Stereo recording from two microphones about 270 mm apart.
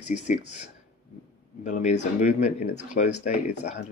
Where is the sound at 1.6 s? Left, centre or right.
Left.